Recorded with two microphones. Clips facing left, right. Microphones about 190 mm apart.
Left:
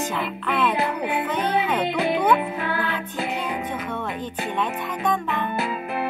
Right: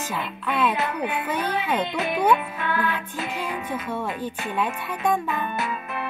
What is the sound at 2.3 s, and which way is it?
Music, 30° left (ahead or behind).